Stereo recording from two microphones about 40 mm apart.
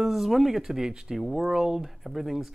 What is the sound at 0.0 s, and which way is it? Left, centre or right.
Speech, centre.